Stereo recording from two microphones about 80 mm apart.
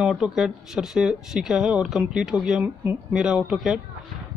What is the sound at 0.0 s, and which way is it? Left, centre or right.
Speech, centre.